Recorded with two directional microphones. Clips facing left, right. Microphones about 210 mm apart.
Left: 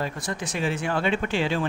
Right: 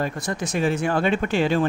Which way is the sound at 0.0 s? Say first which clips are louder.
Right 4 dB; 45° right (ahead or behind).